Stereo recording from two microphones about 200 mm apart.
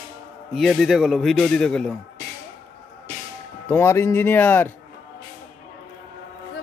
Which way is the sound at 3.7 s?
10° left (ahead or behind).